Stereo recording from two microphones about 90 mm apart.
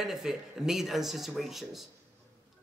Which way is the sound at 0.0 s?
5° right (ahead or behind).